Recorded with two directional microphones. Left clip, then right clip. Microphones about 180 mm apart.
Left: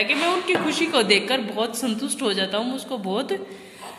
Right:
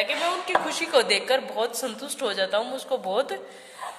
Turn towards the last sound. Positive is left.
turn(degrees=-45)  # may be behind; listen again after turning